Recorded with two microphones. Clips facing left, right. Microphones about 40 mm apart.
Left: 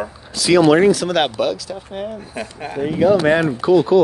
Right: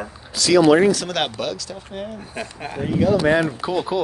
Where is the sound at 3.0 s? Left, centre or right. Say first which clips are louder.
Left 3 dB; left.